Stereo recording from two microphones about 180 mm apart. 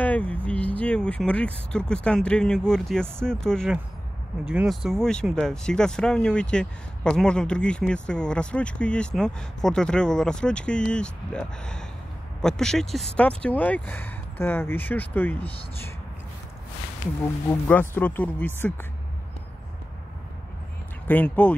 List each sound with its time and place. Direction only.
0.0 s speech: 10° left (ahead or behind)
17.5 s speech: 10° left (ahead or behind)
21.1 s speech: 10° left (ahead or behind)